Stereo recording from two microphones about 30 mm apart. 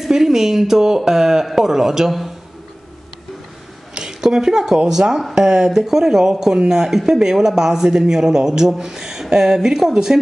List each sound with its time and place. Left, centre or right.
0.1 s speech: centre
3.9 s a sound: right
4.8 s speech: centre